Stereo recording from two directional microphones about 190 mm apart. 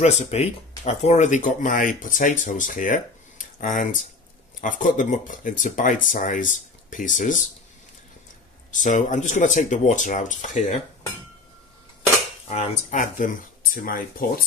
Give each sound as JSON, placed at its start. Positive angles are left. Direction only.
{"t": 0.0, "sound": "speech", "side_deg": 35}
{"t": 8.7, "sound": "speech", "side_deg": 40}
{"t": 12.4, "sound": "speech", "side_deg": 40}